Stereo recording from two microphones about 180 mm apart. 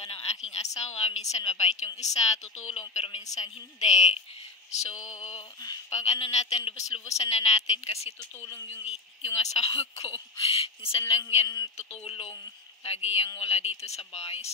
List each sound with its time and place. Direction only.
0.0 s a sound: 35° left (ahead or behind)
0.5 s a woman's voice: 40° left (ahead or behind)
8.4 s speech: 15° left (ahead or behind)
9.2 s a woman's voice: 35° left (ahead or behind)
11.4 s a man's voice: 20° left (ahead or behind)
11.7 s a woman's voice: 35° left (ahead or behind)